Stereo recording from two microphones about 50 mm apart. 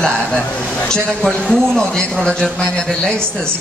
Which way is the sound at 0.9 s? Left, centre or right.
Centre.